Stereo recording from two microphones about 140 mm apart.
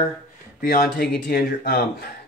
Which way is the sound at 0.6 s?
90° left.